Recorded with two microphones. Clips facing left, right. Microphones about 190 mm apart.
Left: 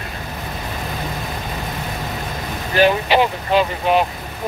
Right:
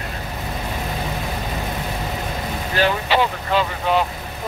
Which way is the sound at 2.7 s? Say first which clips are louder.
Left 5 dB; 15° left (ahead or behind).